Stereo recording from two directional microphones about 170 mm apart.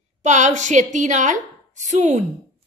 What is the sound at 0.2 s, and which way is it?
A woman's voice, 45° right (ahead or behind).